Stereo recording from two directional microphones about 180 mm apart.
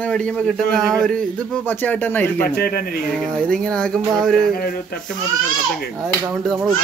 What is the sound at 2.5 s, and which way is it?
Speech, 60° left (ahead or behind).